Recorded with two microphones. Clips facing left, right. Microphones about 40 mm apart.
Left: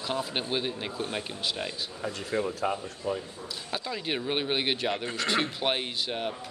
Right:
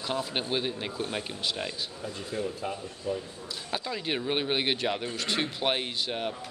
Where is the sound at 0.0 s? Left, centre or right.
Centre.